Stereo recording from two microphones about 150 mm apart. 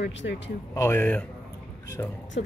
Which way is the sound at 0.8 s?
15° left (ahead or behind).